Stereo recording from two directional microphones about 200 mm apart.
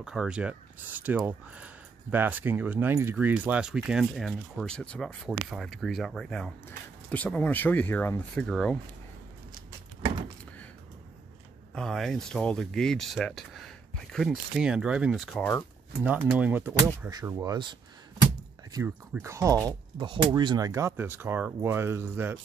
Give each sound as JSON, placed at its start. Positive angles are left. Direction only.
{"t": 0.0, "sound": "speech", "side_deg": -5}
{"t": 11.7, "sound": "speech", "side_deg": 0}